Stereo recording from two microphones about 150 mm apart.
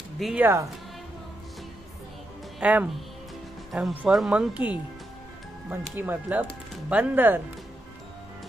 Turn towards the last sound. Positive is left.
turn(degrees=-10)  # may be behind; listen again after turning